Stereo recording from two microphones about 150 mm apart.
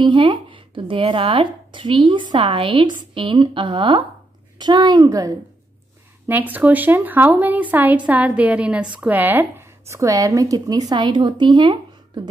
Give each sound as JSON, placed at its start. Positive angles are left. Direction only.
{"t": 0.0, "sound": "a woman's voice", "side_deg": -30}
{"t": 6.2, "sound": "speech", "side_deg": -10}